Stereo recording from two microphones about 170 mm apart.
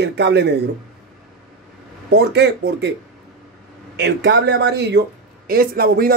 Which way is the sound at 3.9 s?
85° right.